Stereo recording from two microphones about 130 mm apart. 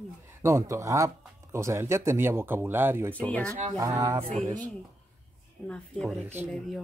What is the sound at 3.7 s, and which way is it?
Speech, 25° right (ahead or behind).